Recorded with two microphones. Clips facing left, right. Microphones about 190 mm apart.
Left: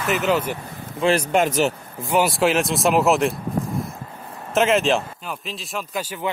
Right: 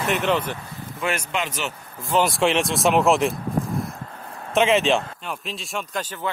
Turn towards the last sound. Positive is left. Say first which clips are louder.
# left 2 dB
turn(degrees=10)  # may be behind; listen again after turning